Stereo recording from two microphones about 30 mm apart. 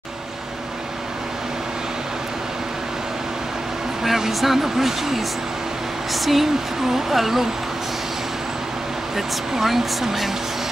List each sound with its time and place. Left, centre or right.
4.0 s speech: centre
9.1 s speech: centre